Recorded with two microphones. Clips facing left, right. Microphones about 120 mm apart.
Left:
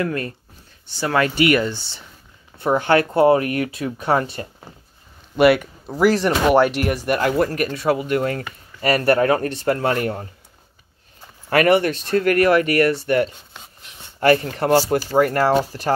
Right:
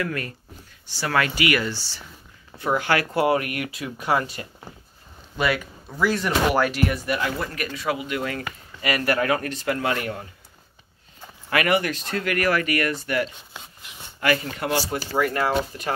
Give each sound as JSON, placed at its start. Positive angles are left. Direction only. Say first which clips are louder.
{"t": 0.0, "sound": "speech", "louder": "left 5 dB", "side_deg": 30}
{"t": 5.4, "sound": "speech", "louder": "left 10 dB", "side_deg": 60}
{"t": 5.9, "sound": "speech", "louder": "left 6 dB", "side_deg": 35}
{"t": 6.9, "sound": "speech", "louder": "left 6 dB", "side_deg": 45}
{"t": 11.5, "sound": "speech", "louder": "left 6 dB", "side_deg": 35}